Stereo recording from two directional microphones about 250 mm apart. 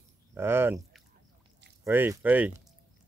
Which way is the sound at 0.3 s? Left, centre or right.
Centre.